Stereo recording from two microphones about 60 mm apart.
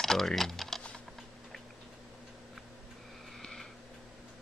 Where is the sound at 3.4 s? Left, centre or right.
Centre.